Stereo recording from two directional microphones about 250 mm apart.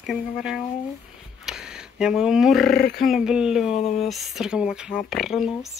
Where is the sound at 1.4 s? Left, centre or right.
Centre.